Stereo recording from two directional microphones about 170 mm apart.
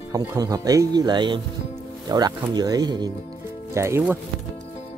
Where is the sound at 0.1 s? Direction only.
20° right (ahead or behind).